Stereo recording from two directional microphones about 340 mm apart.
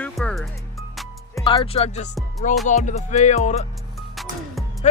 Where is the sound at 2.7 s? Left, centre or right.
Left.